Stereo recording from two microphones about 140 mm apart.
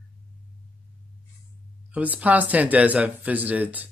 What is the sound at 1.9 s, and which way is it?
Speech, 10° right (ahead or behind).